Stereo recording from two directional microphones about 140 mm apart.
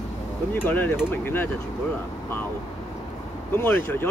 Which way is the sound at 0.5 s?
15° left (ahead or behind).